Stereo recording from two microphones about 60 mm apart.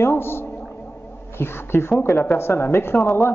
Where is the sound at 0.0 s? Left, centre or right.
Left.